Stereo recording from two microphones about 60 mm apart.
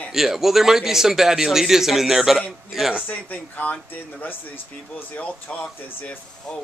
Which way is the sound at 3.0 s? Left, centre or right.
Left.